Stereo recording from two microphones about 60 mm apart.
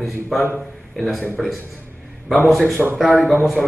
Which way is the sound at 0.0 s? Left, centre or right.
Centre.